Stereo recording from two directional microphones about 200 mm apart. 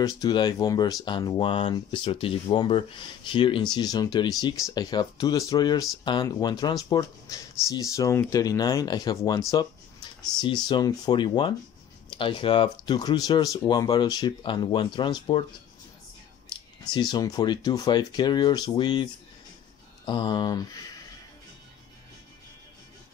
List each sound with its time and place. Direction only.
0.0 s speech: 20° left (ahead or behind)
16.5 s a sound: 25° left (ahead or behind)
16.9 s speech: 20° left (ahead or behind)
20.1 s speech: 25° left (ahead or behind)